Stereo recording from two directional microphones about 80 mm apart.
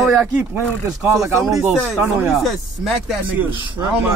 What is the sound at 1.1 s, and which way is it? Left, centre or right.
Speech, centre.